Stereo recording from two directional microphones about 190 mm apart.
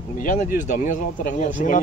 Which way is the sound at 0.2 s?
45° left (ahead or behind).